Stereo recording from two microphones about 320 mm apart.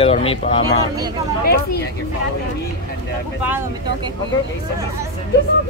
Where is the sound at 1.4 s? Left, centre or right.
Left.